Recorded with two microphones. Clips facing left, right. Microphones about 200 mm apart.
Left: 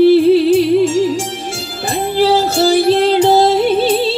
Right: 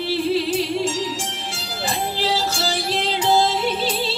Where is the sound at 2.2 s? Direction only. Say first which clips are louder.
Left 15 dB; 55° left (ahead or behind).